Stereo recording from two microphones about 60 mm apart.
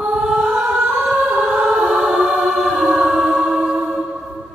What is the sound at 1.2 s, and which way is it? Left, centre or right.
Choir, right.